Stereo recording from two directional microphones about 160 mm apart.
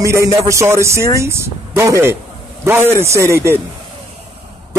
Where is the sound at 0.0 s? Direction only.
20° right (ahead or behind).